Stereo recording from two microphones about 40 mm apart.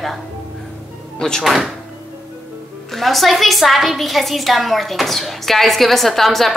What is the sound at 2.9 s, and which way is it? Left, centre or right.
A woman's voice, centre.